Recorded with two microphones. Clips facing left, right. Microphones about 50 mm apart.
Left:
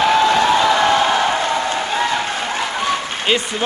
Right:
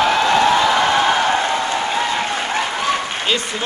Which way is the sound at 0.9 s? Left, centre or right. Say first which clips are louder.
Even; centre.